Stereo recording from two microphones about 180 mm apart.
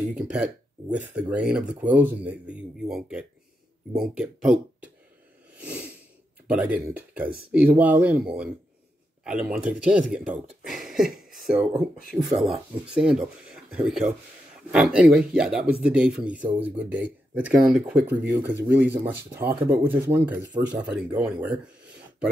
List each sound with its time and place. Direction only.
0.1 s speech: 5° right (ahead or behind)
5.6 s a sound: 10° right (ahead or behind)
6.5 s speech: 10° right (ahead or behind)
18.3 s speech: 15° right (ahead or behind)